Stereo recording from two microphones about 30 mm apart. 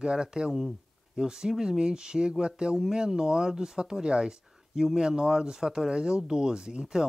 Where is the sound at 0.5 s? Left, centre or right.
Centre.